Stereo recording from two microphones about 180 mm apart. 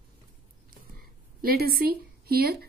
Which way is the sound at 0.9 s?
55° right (ahead or behind).